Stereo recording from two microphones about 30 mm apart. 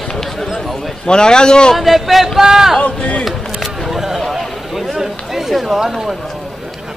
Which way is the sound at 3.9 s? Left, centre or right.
Centre.